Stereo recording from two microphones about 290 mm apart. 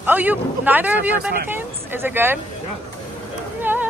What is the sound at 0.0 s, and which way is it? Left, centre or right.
Speech, centre.